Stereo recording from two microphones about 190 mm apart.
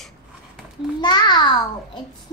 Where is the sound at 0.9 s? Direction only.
20° left (ahead or behind).